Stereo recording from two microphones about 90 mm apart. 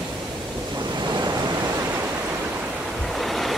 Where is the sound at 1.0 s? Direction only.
55° right (ahead or behind).